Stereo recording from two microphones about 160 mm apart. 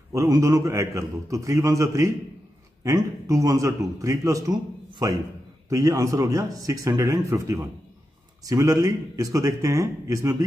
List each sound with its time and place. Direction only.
0.1 s a man's voice: 20° right (ahead or behind)